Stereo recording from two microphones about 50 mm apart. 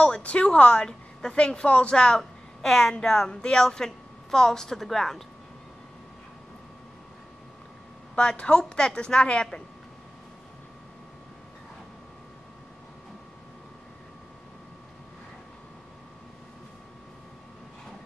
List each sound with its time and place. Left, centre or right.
0.0 s a woman's voice: left; by 5.2 s centre
8.2 s a woman's voice: centre